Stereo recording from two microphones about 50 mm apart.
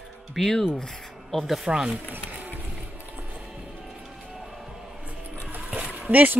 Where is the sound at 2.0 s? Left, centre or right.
Right.